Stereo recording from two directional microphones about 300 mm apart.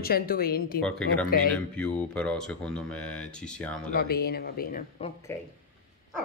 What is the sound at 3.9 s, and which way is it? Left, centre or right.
Speech, left.